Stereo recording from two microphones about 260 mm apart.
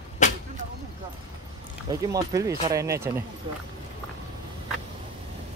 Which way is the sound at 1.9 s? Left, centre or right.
Centre.